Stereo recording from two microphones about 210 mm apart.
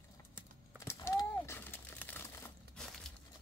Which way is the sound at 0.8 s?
15° left (ahead or behind).